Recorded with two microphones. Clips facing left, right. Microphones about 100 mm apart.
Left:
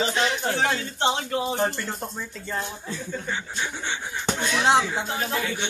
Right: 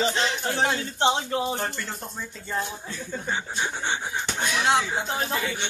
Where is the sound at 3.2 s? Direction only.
25° right (ahead or behind).